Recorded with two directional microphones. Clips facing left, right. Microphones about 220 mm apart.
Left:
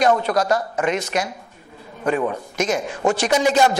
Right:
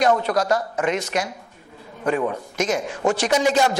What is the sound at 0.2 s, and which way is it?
Speech, 10° left (ahead or behind).